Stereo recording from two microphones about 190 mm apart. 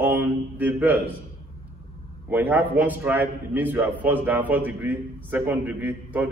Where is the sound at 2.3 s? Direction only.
10° right (ahead or behind).